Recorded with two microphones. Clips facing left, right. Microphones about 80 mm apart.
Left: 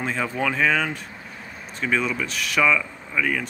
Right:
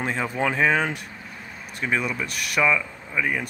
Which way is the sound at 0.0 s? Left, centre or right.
Right.